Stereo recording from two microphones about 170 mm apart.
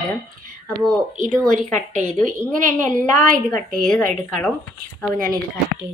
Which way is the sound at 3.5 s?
5° left (ahead or behind).